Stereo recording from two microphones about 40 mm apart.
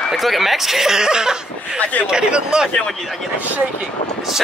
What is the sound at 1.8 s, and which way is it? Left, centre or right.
Speech, left.